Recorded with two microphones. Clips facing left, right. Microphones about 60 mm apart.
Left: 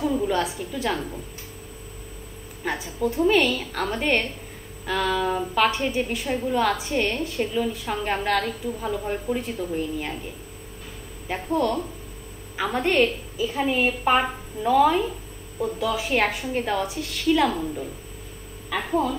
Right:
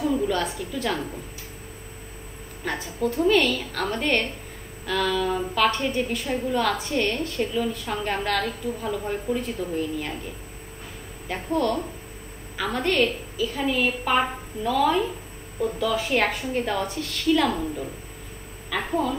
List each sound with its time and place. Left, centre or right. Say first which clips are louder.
0.0 s a sound: even; centre
0.6 s a woman's voice: left 1 dB; centre
2.6 s a woman's voice: left 1 dB; centre
11.2 s a woman's voice: left 1 dB; centre
17.5 s a woman's voice: even; centre